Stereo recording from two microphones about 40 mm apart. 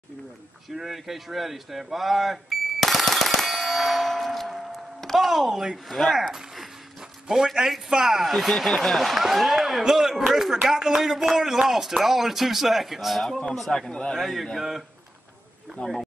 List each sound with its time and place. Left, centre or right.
0.7 s a sound: centre
5.9 s speech: centre
7.2 s speech: centre
8.3 s speech: centre
9.1 s speech: centre
13.5 s speech: centre
14.1 s speech: centre
15.8 s speech: left